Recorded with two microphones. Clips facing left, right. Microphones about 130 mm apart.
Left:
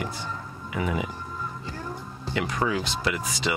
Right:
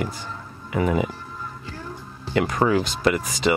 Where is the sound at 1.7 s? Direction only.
15° left (ahead or behind).